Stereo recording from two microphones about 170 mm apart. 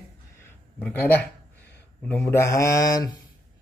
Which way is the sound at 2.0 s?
10° left (ahead or behind).